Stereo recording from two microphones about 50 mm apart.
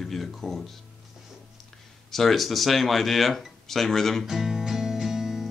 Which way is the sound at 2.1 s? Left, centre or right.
Centre.